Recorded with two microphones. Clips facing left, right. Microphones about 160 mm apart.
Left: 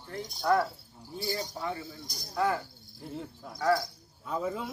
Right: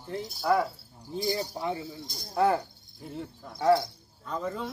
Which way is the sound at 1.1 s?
15° right (ahead or behind).